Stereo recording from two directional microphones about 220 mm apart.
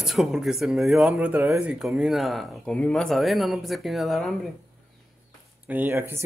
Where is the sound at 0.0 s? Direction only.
Centre (ahead or behind).